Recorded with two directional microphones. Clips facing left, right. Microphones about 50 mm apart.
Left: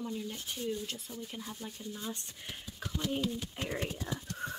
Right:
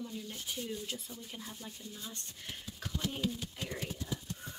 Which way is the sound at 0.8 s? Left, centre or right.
Centre.